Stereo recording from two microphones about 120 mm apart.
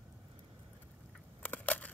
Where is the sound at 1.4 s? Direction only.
15° left (ahead or behind).